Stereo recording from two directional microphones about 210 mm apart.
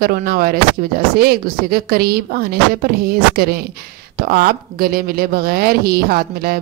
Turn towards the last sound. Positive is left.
turn(degrees=-45)  # may be behind; listen again after turning